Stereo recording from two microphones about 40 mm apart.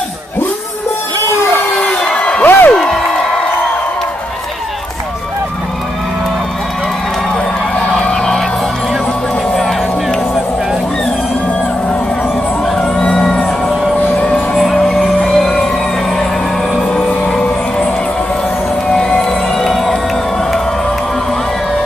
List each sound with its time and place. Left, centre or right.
2.1 s a sound: left
2.4 s music: left
7.7 s music: centre
12.7 s a sound: left
14.5 s vehicle: centre
15.2 s music: centre
16.9 s music: left
18.9 s music: left
19.6 s crowd: centre